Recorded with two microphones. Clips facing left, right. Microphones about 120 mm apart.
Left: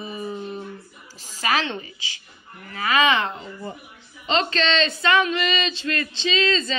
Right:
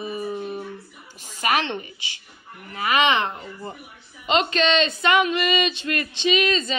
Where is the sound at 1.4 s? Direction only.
20° right (ahead or behind).